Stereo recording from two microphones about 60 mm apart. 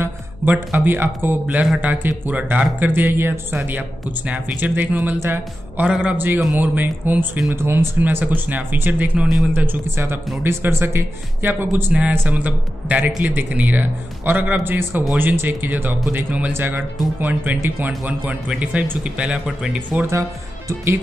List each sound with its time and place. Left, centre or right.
0.5 s a man's voice: right
4.6 s a man's voice: right
5.9 s a man's voice: centre
6.1 s speech: right
7.4 s speech: right
8.0 s a man's voice: right
9.9 s speech: right
12.1 s a man's voice: right
20.1 s speech: right